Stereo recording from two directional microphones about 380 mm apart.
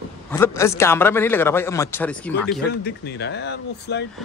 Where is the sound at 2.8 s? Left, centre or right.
Left.